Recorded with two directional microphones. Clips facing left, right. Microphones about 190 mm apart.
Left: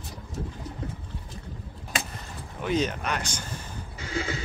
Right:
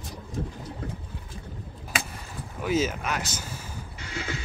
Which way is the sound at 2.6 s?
5° right (ahead or behind).